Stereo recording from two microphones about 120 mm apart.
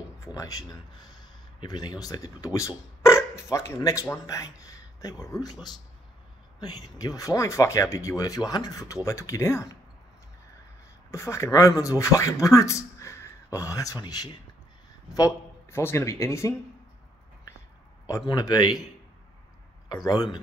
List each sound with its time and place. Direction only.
0.4 s speech: 30° left (ahead or behind)
11.1 s speech: 25° left (ahead or behind)
18.3 s speech: 35° left (ahead or behind)
19.9 s speech: 30° left (ahead or behind)